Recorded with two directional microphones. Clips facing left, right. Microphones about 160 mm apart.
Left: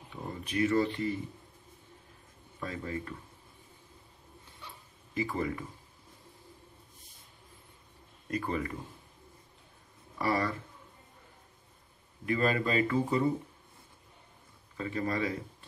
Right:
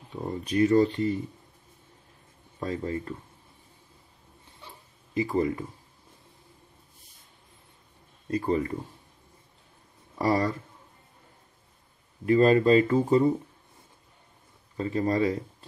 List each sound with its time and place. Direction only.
0.1 s speech: 35° right (ahead or behind)
2.6 s speech: 35° right (ahead or behind)
4.6 s a sound: 25° right (ahead or behind)
8.3 s speech: 30° right (ahead or behind)
10.1 s speech: 35° right (ahead or behind)
12.3 s speech: 35° right (ahead or behind)
14.8 s speech: 35° right (ahead or behind)